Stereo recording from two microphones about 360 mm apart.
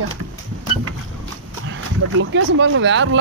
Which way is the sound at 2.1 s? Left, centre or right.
Right.